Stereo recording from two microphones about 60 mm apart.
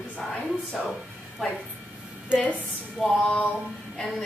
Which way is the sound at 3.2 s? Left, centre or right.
Centre.